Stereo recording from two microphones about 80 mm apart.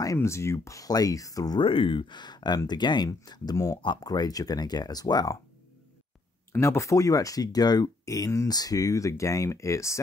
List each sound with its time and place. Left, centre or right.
0.0 s speech: left
1.6 s speech: left
3.5 s speech: left
4.0 s speech: left
6.6 s speech: left